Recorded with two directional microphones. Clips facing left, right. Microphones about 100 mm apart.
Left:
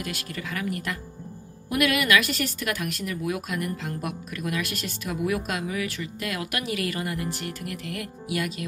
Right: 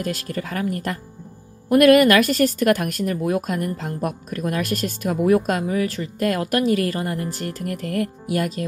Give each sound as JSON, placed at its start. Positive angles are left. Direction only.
{"t": 0.0, "sound": "a woman's voice", "side_deg": -40}